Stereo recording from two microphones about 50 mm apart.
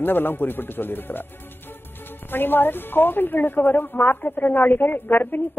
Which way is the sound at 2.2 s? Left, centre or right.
Left.